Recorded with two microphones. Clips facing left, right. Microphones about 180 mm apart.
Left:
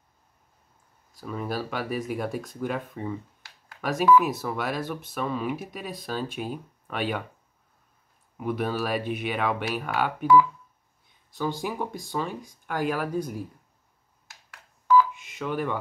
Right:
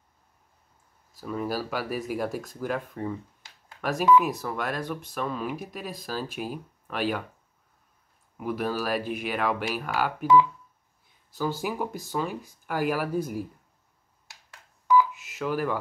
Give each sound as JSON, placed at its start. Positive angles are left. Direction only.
{"t": 1.1, "sound": "speech", "side_deg": 0}
{"t": 8.4, "sound": "speech", "side_deg": 0}
{"t": 10.2, "sound": "speech", "side_deg": -20}
{"t": 11.3, "sound": "speech", "side_deg": -5}
{"t": 14.5, "sound": "telephone dialing", "side_deg": -15}
{"t": 15.1, "sound": "speech", "side_deg": 0}